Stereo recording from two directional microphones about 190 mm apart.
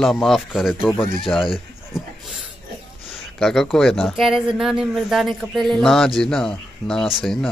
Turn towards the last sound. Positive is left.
turn(degrees=0)  # may be behind; listen again after turning